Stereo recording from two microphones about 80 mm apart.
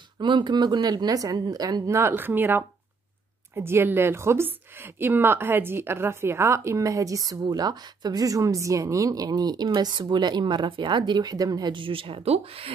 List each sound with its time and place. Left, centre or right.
0.2 s speech: right
1.9 s a woman's voice: right
11.7 s speech: right